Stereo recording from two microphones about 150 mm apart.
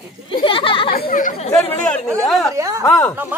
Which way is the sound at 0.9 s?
75° left (ahead or behind).